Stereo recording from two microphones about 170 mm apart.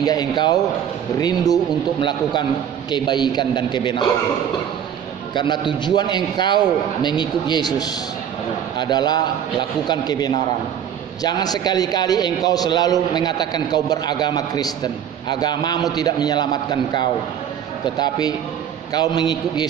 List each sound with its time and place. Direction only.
0.0 s a man's voice: 25° left (ahead or behind)
5.3 s a man's voice: 25° left (ahead or behind)
17.9 s a man's voice: 25° left (ahead or behind)